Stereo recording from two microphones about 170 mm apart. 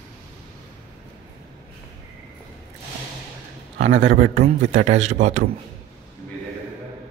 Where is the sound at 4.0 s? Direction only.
80° right.